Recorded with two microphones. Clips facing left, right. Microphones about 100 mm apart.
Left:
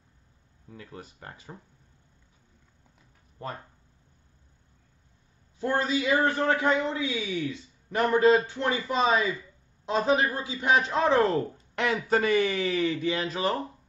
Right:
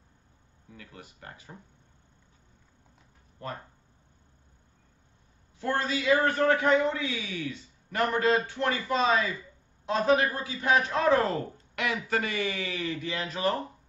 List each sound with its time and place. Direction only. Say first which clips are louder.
0.7 s speech: left 4 dB; 30° left (ahead or behind)
5.6 s a man's voice: left 3 dB; 20° left (ahead or behind)